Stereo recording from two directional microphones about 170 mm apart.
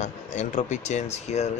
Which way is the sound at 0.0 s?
45° left (ahead or behind).